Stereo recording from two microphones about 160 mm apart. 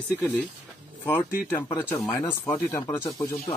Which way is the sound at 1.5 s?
25° left (ahead or behind).